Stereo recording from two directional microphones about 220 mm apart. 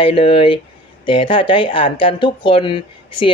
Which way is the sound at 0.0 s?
25° left (ahead or behind).